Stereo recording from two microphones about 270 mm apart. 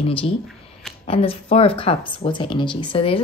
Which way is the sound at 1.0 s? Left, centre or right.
Left.